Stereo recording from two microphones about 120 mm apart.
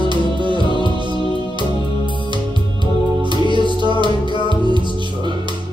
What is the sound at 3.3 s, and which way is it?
Music, 40° right (ahead or behind).